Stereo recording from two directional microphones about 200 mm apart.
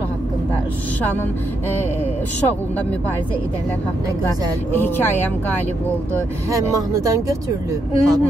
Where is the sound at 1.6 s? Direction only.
10° left (ahead or behind).